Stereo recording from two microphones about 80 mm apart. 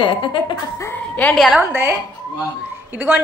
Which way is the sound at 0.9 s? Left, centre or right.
Centre.